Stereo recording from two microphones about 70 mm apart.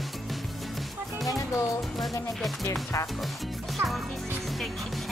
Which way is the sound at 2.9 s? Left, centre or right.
Left.